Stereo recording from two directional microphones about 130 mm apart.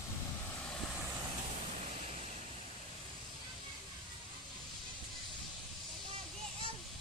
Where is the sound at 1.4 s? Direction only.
60° right (ahead or behind).